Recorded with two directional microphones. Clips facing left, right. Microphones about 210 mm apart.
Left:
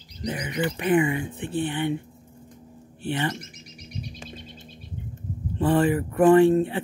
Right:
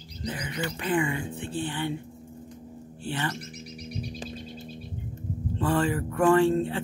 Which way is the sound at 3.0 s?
20° left (ahead or behind).